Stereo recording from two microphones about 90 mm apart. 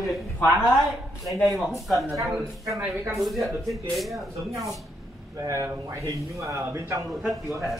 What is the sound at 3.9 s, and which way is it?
Speech, centre (ahead or behind).